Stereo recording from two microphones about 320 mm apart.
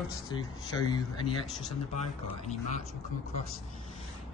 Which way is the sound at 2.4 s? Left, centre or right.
Left.